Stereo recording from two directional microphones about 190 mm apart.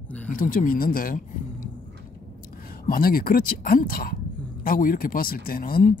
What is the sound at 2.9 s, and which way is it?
Speech, 50° left (ahead or behind).